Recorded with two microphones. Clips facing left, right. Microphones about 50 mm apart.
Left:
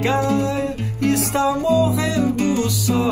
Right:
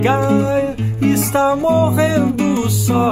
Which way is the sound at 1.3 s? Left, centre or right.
Right.